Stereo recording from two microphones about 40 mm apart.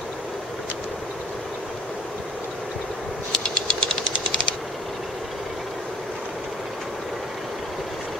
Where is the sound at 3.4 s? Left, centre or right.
Left.